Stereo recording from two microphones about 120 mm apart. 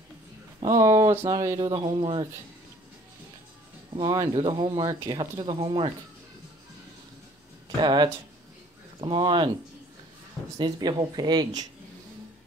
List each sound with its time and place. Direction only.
0.7 s speech: 25° right (ahead or behind)
2.0 s speech: 45° right (ahead or behind)
3.9 s speech: 45° right (ahead or behind)
7.8 s speech: 35° right (ahead or behind)
10.6 s speech: 35° right (ahead or behind)